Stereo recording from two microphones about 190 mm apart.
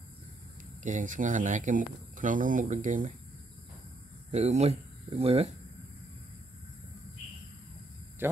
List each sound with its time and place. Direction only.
0.8 s speech: 40° right (ahead or behind)
4.3 s speech: 35° right (ahead or behind)
8.2 s a sound: 10° right (ahead or behind)